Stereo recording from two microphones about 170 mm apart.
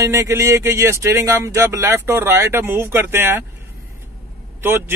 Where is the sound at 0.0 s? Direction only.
15° right (ahead or behind).